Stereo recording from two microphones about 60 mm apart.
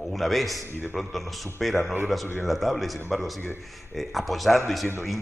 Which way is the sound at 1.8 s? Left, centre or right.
Right.